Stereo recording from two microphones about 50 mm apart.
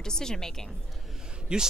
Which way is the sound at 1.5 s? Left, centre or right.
Centre.